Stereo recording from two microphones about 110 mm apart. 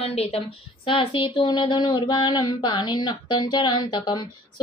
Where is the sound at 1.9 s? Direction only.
45° left (ahead or behind).